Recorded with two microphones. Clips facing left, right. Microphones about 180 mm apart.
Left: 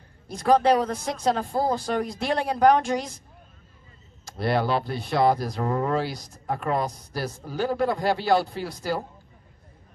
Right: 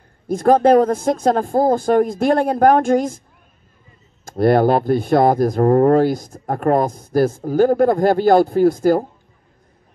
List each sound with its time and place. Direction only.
0.3 s speech: 50° right (ahead or behind)
4.2 s speech: 50° right (ahead or behind)